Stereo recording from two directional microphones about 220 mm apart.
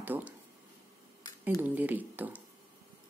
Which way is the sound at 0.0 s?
10° right (ahead or behind).